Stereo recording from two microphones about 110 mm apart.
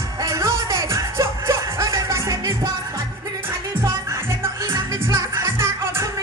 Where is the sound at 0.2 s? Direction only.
25° right (ahead or behind).